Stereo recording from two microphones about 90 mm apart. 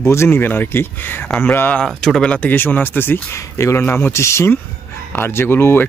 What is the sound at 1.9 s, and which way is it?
Speech, 5° left (ahead or behind).